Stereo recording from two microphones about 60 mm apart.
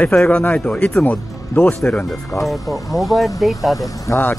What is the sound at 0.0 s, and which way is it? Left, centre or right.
Speech, centre.